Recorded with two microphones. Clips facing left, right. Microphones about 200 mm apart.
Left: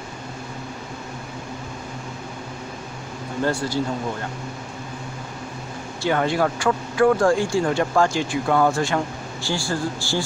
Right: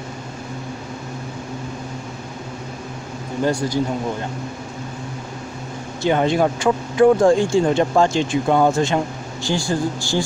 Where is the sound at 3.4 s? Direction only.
15° right (ahead or behind).